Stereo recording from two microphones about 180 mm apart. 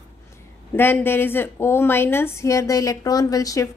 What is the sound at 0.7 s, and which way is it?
A woman's voice, 10° left (ahead or behind).